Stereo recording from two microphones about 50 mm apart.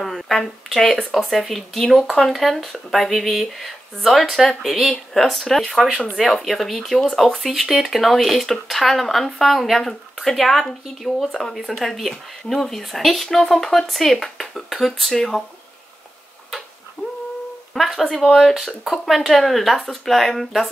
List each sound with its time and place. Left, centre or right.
0.0 s speech: centre
17.0 s a sound: left
17.7 s speech: centre